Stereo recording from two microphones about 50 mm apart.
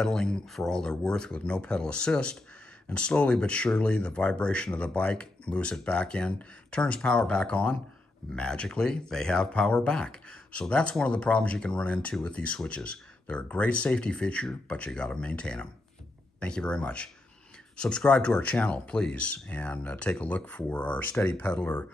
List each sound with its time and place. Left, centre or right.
0.0 s speech: centre